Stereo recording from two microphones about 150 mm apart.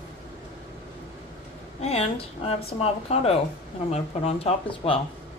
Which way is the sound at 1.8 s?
45° left (ahead or behind).